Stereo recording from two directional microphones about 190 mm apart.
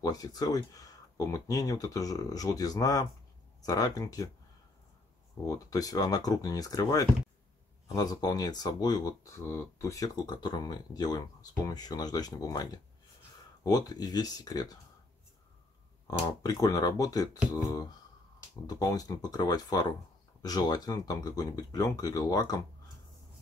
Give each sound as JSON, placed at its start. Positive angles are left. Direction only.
{"t": 0.0, "sound": "speech", "side_deg": 20}
{"t": 5.4, "sound": "speech", "side_deg": 15}
{"t": 16.1, "sound": "speech", "side_deg": 20}